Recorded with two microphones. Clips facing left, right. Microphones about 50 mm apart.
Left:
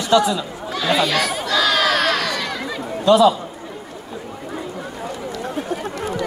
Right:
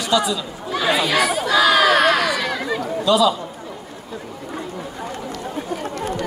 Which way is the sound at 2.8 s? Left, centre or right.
Left.